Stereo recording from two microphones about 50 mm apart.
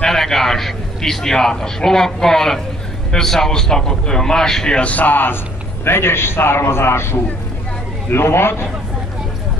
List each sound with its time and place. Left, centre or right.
0.0 s a man's voice: centre
4.7 s a man's voice: left
5.9 s a man's voice: left